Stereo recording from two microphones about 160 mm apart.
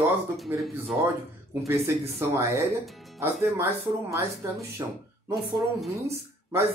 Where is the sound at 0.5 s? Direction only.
10° right (ahead or behind).